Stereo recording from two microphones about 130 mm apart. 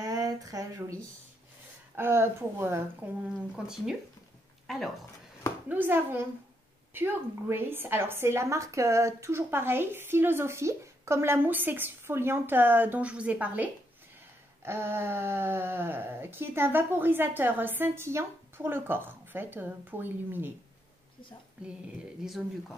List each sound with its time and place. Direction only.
0.0 s a sound: 30° right (ahead or behind)
2.0 s a woman's voice: 20° right (ahead or behind)
5.7 s a woman's voice: 15° right (ahead or behind)
21.6 s speech: 5° right (ahead or behind)